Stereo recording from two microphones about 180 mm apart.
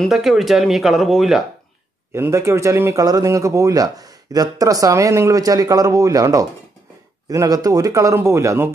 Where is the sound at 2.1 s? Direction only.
15° right (ahead or behind).